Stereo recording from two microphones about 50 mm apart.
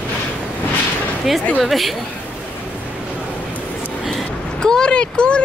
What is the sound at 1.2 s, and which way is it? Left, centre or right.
Speech, centre.